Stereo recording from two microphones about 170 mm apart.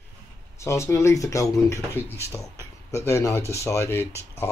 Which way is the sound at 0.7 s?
15° left (ahead or behind).